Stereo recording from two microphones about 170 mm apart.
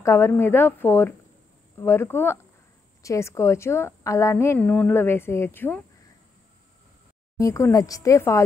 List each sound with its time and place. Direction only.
0.0 s a woman's voice: 15° left (ahead or behind)
7.3 s speech: 20° left (ahead or behind)